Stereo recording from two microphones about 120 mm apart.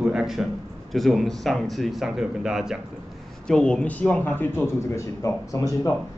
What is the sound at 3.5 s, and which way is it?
Speech, 5° left (ahead or behind).